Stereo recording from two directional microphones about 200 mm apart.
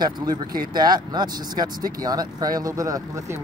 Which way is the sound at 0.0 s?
20° right (ahead or behind).